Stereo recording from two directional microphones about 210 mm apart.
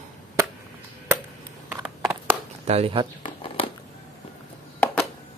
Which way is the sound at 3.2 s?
25° left (ahead or behind).